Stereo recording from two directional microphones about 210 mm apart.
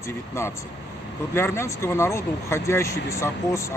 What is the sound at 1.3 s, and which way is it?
A man's voice, 10° left (ahead or behind).